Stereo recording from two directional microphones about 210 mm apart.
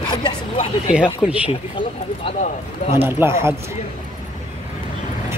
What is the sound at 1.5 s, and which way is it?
Speech, 25° left (ahead or behind).